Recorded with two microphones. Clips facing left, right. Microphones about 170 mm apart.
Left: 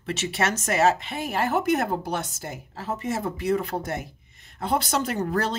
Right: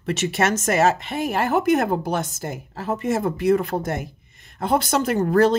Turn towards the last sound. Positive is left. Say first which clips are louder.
# right 8 dB
turn(degrees=-50)  # may be behind; listen again after turning